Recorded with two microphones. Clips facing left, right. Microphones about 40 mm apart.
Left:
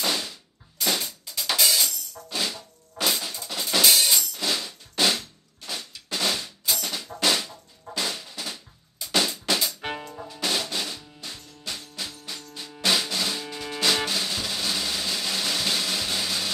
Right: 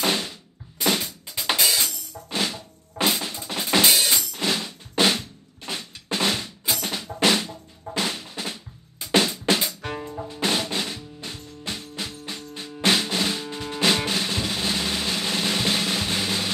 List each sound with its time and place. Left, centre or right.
0.0 s music: right
0.7 s drum: right
2.3 s drum kit: right
5.7 s drum: right
9.1 s drum kit: right
10.2 s music: right